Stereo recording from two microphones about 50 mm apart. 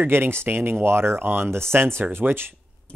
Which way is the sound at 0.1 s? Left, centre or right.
Right.